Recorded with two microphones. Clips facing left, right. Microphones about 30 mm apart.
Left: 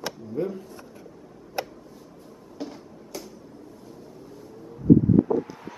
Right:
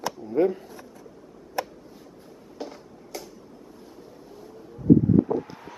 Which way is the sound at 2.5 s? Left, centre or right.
Centre.